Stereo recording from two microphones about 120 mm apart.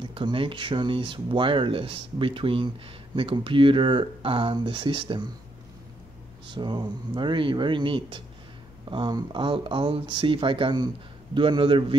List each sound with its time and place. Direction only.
0.0 s speech: 45° right (ahead or behind)
6.4 s speech: 40° right (ahead or behind)